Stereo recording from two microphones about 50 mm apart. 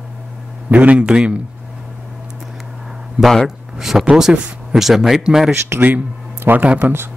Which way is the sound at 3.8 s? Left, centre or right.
Centre.